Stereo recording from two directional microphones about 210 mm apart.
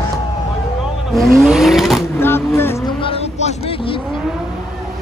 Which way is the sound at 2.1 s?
10° left (ahead or behind).